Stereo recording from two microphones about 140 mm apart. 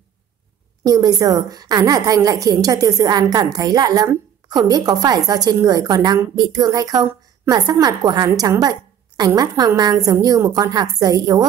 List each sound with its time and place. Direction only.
0.8 s a woman's voice: 25° right (ahead or behind)